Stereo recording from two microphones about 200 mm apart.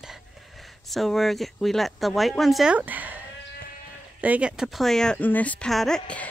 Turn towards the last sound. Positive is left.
turn(degrees=5)  # may be behind; listen again after turning